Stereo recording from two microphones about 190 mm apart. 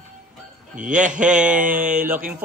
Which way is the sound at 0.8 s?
40° right (ahead or behind).